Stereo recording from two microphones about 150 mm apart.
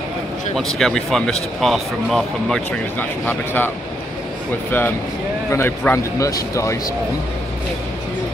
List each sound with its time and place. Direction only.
0.6 s speech: centre (ahead or behind)
3.0 s a man's voice: 15° left (ahead or behind)